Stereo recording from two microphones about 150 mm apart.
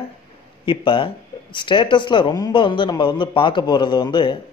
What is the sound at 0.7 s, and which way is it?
A man's voice, 35° left (ahead or behind).